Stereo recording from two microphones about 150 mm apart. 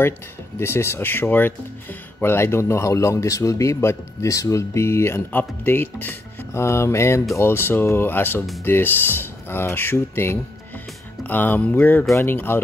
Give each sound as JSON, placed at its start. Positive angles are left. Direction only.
{"t": 0.6, "sound": "a man's voice", "side_deg": 15}